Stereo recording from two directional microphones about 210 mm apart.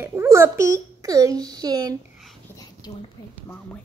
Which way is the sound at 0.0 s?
15° right (ahead or behind).